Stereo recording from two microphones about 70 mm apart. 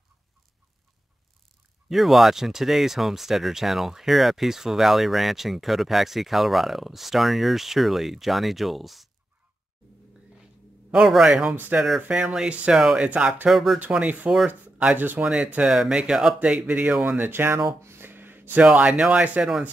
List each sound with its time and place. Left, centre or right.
1.9 s speech: centre
10.9 s speech: centre
11.5 s speech: right
12.1 s speech: centre
13.5 s speech: centre
13.7 s speech: right
15.2 s speech: centre
17.2 s speech: right
17.8 s a sound: right
18.6 s speech: centre